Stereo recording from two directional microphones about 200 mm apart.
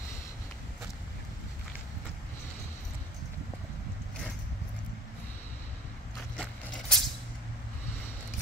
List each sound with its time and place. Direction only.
6.3 s scrape: 5° left (ahead or behind)